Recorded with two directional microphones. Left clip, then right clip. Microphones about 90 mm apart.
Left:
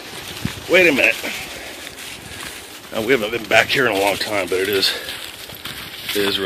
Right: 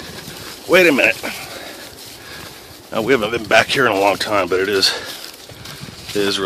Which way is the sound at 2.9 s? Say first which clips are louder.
Right 2 dB; 50° right (ahead or behind).